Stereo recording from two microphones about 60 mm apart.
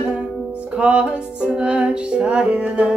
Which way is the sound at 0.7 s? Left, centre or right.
Centre.